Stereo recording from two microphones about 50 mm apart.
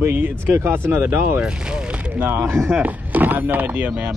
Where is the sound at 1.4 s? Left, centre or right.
Centre.